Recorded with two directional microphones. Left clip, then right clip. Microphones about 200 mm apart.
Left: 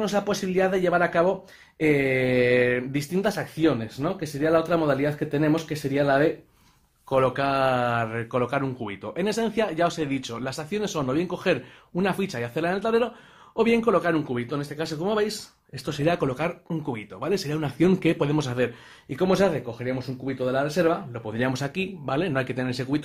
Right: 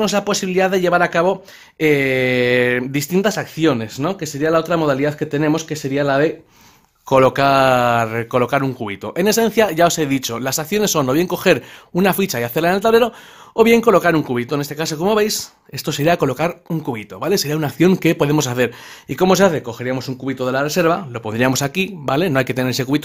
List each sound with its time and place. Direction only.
0.0 s speech: 35° right (ahead or behind)
7.1 s speech: 50° right (ahead or behind)